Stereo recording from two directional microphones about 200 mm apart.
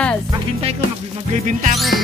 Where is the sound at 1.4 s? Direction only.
35° right (ahead or behind).